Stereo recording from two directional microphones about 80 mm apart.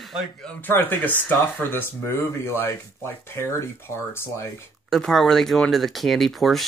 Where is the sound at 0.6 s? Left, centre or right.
Left.